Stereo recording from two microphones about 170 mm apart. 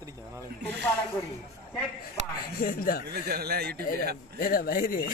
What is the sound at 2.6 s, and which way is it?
Speech, 60° left (ahead or behind).